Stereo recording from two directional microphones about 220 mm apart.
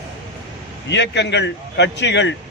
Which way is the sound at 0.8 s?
50° left (ahead or behind).